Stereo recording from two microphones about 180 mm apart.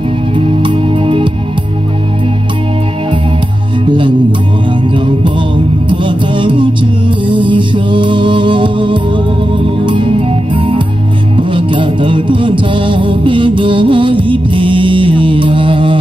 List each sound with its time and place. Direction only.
0.4 s music: 30° right (ahead or behind)
4.9 s music: 30° right (ahead or behind)